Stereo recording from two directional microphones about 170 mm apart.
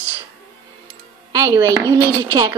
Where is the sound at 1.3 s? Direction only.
20° right (ahead or behind).